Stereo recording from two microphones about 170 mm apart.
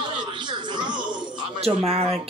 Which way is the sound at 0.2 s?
25° right (ahead or behind).